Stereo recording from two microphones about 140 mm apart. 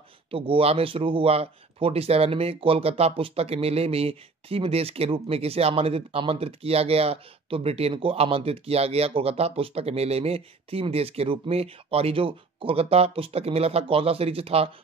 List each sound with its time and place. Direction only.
0.3 s speech: 40° right (ahead or behind)